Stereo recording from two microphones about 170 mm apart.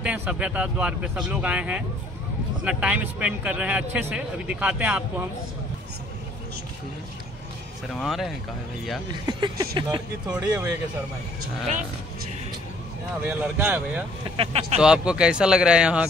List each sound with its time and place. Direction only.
0.0 s speech: 10° right (ahead or behind)
7.9 s speech: centre (ahead or behind)
9.2 s speech: 25° right (ahead or behind)
10.4 s speech: 15° right (ahead or behind)
13.2 s speech: 10° right (ahead or behind)
14.2 s speech: 30° right (ahead or behind)
14.8 s speech: 5° right (ahead or behind)